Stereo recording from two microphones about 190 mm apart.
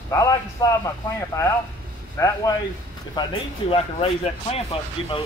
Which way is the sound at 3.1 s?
25° left (ahead or behind).